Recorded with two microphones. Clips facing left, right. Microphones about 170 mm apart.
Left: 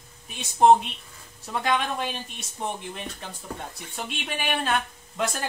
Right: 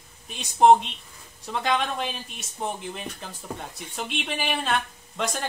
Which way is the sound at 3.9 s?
Centre (ahead or behind).